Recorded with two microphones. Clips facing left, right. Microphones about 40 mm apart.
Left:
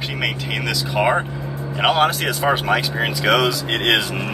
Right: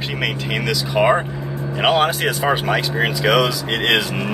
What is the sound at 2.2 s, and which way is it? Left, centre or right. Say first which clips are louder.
Speech: right 1 dB; centre.